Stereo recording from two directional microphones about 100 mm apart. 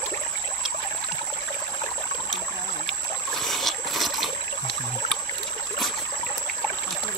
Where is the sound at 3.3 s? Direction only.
5° left (ahead or behind).